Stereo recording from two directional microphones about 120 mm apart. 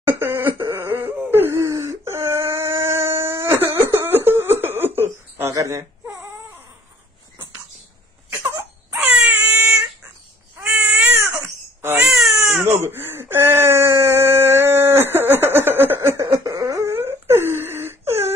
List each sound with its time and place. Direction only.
0.0 s laughter: 15° right (ahead or behind)
0.5 s whimper: 40° right (ahead or behind)
0.7 s whimper: 20° right (ahead or behind)
4.0 s a sound: 20° right (ahead or behind)
8.4 s wail: 20° right (ahead or behind)
10.6 s cat: 10° right (ahead or behind)
12.3 s baby cry: 5° right (ahead or behind)
12.6 s wail: 20° right (ahead or behind)